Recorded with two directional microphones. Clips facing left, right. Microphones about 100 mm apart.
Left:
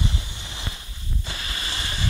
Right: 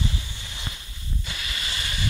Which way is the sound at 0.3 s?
25° left (ahead or behind).